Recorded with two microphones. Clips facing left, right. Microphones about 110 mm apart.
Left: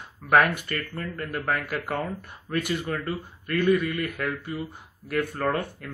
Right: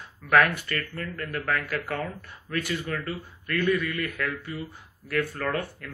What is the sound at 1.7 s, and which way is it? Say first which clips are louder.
Speech: left 1 dB; 15° left (ahead or behind).